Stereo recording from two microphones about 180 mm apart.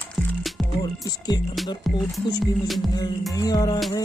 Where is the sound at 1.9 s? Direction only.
Centre (ahead or behind).